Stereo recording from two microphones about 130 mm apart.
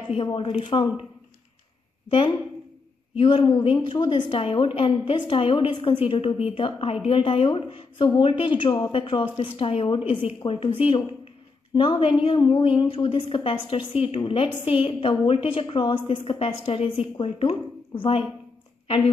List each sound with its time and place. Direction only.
0.1 s a woman's voice: 45° left (ahead or behind)
2.0 s a woman's voice: 45° left (ahead or behind)